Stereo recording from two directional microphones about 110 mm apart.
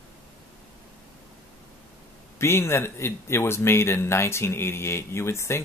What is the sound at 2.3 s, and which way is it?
Speech, 25° left (ahead or behind).